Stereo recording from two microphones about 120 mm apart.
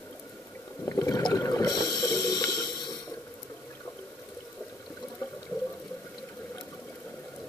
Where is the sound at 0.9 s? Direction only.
30° left (ahead or behind).